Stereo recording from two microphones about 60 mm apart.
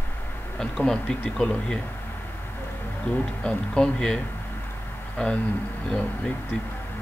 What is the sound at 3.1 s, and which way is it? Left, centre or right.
Speech, centre.